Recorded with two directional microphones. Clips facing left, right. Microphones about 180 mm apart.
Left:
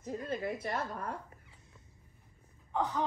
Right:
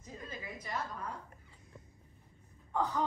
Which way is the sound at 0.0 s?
65° left (ahead or behind).